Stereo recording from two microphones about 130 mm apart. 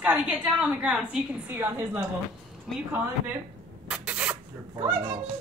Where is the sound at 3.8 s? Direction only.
10° right (ahead or behind).